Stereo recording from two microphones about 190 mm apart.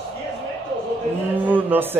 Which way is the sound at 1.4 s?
10° right (ahead or behind).